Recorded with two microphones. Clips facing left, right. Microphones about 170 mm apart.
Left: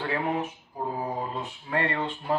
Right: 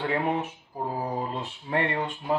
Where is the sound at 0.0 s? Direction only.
20° right (ahead or behind).